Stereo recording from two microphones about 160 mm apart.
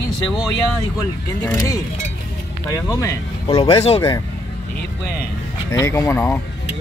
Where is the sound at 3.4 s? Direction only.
35° left (ahead or behind).